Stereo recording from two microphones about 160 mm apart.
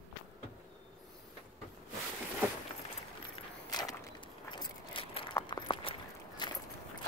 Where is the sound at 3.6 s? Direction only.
25° left (ahead or behind).